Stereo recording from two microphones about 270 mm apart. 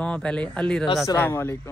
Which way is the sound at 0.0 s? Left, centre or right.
Centre.